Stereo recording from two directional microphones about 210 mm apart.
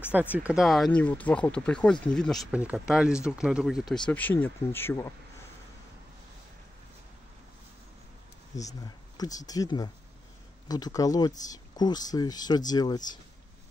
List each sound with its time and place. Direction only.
0.4 s speech: 5° right (ahead or behind); by 5.1 s 10° left (ahead or behind)
8.8 s speech: 20° left (ahead or behind)